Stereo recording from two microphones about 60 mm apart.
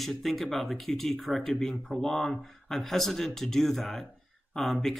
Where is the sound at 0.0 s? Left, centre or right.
Centre.